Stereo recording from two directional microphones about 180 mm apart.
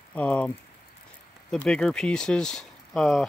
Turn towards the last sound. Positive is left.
turn(degrees=0)  # may be behind; listen again after turning